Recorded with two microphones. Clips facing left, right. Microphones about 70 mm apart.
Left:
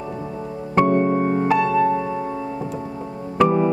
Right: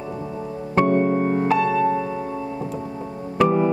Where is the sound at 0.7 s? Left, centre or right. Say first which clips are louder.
Left 1 dB; centre.